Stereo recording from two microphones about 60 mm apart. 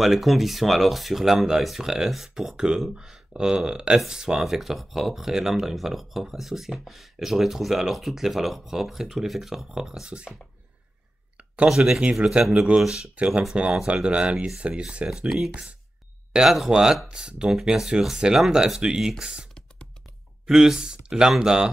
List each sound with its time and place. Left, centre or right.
0.0 s speech: centre
11.3 s a sound: right
11.7 s speech: centre
13.8 s speech: centre
15.2 s speech: centre